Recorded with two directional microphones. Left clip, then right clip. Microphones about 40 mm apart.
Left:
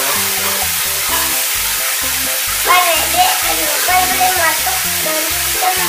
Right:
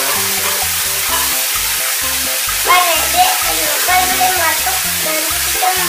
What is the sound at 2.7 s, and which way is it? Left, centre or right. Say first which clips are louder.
Music: even; centre.